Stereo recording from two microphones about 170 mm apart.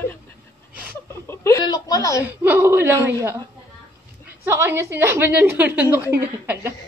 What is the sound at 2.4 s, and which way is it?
Speech, 10° right (ahead or behind).